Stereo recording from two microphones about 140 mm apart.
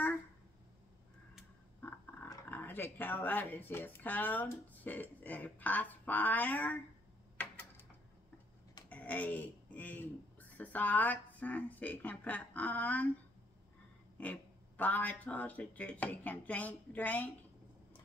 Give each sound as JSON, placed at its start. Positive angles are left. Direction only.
{"t": 1.8, "sound": "a sound", "side_deg": 15}
{"t": 2.5, "sound": "speech", "side_deg": 15}
{"t": 7.3, "sound": "typewriter", "side_deg": 15}
{"t": 8.8, "sound": "speech", "side_deg": 10}
{"t": 14.1, "sound": "speech", "side_deg": 10}